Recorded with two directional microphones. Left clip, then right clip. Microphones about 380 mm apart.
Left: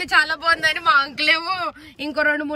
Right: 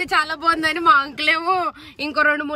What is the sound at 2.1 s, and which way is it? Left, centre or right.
Speech, right.